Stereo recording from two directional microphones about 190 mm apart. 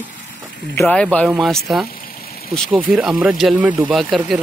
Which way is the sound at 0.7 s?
5° left (ahead or behind).